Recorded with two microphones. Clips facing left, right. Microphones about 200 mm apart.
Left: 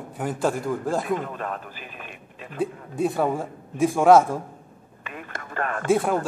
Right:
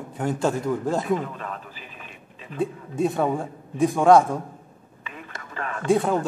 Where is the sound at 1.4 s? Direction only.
55° left (ahead or behind).